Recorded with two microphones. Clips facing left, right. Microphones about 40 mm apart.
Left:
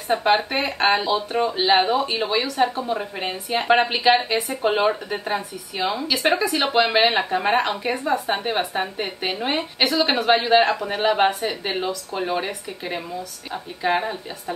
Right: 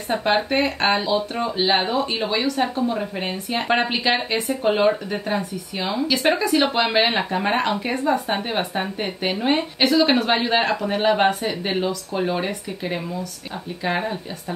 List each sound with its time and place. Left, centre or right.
0.1 s speech: centre